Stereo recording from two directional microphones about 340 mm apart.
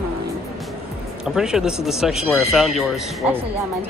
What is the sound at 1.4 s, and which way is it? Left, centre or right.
Speech, centre.